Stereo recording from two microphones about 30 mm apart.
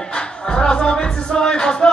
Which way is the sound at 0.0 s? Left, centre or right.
Left.